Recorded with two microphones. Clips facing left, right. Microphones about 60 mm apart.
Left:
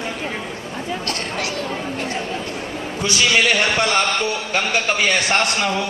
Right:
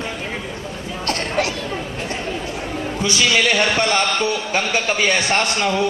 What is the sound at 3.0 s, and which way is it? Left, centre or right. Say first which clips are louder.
Speech: even; left.